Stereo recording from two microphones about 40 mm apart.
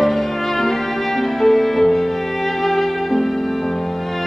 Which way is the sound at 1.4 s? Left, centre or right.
Centre.